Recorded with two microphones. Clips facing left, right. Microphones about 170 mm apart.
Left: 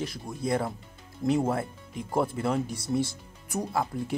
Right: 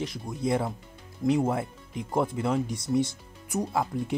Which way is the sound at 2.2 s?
15° right (ahead or behind).